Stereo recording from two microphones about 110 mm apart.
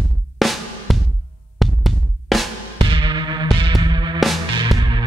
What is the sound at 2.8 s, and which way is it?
Music, 45° right (ahead or behind).